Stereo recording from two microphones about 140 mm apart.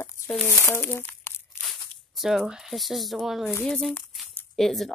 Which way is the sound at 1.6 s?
Centre (ahead or behind).